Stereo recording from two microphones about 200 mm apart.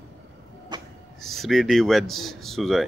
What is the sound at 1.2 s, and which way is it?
Speech, centre (ahead or behind).